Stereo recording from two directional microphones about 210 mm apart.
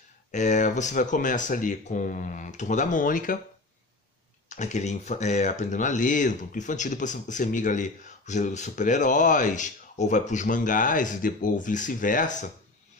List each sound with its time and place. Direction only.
0.3 s speech: 35° left (ahead or behind)
4.5 s speech: 35° left (ahead or behind)